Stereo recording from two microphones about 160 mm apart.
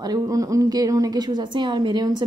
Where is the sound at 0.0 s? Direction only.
20° right (ahead or behind).